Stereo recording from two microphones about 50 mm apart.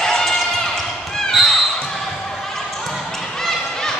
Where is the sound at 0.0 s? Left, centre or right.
Centre.